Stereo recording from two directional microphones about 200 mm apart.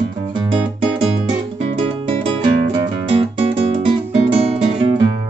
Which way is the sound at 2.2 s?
25° right (ahead or behind).